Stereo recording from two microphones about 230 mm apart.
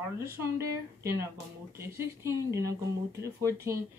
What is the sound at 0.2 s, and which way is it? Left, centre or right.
Speech, centre.